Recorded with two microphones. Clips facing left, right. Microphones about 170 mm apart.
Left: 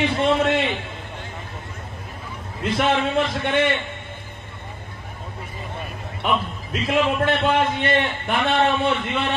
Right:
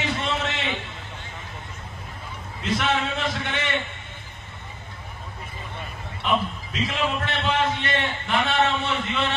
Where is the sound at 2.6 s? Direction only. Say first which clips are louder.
Left 4 dB; 55° left (ahead or behind).